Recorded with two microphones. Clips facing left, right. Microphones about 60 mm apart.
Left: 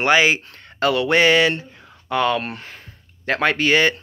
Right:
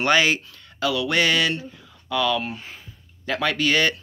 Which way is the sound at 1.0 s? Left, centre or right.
Left.